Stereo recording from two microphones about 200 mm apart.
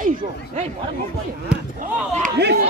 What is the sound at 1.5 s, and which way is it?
Speech, 5° right (ahead or behind).